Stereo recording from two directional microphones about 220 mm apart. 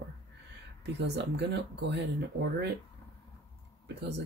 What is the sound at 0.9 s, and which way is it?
Speech, 50° right (ahead or behind).